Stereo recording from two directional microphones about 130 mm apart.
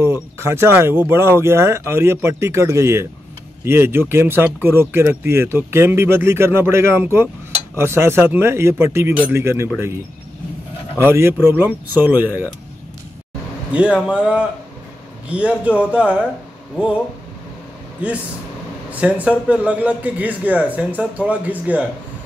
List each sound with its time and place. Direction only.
0.0 s speech: 20° right (ahead or behind)
11.0 s a man's voice: 20° right (ahead or behind)
13.7 s a man's voice: 10° right (ahead or behind)
18.0 s a man's voice: 10° right (ahead or behind)